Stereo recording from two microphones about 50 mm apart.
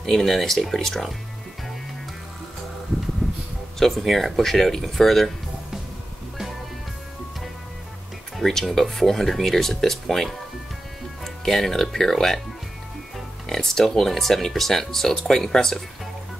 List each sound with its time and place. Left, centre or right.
0.0 s speech: centre
3.2 s a sound: centre
3.8 s speech: centre
8.4 s speech: centre
11.4 s speech: centre
13.5 s speech: centre